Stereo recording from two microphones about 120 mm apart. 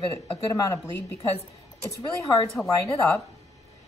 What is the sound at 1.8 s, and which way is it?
A woman's voice, 30° left (ahead or behind).